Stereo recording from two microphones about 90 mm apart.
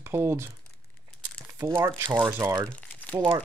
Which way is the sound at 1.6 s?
30° right (ahead or behind).